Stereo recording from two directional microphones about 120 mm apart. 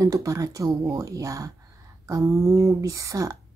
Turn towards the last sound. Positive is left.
turn(degrees=-30)  # may be behind; listen again after turning